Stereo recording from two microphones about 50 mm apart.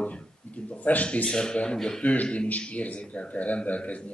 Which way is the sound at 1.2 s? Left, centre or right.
Centre.